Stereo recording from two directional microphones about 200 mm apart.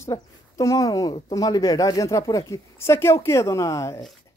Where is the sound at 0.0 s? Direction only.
15° left (ahead or behind).